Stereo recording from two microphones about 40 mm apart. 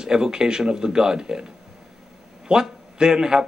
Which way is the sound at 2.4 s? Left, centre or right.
Centre.